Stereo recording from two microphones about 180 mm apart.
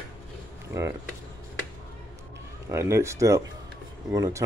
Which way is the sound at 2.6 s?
15° right (ahead or behind).